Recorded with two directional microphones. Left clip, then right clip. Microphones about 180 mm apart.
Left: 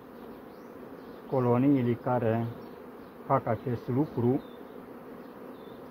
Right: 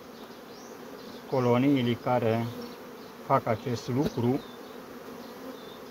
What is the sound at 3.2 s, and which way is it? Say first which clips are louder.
Bee: right 2 dB; centre (ahead or behind).